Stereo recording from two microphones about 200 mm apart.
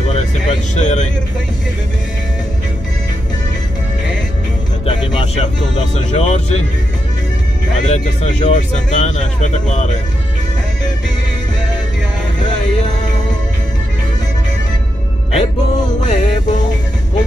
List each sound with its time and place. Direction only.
0.1 s vehicle: 35° left (ahead or behind)
4.8 s music: 30° left (ahead or behind)
5.9 s speech: 35° left (ahead or behind)
7.8 s speech: 35° left (ahead or behind)
16.1 s music: 40° left (ahead or behind)